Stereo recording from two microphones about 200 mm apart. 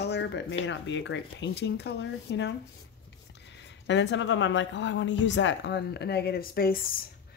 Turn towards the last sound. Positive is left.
turn(degrees=50)  # may be behind; listen again after turning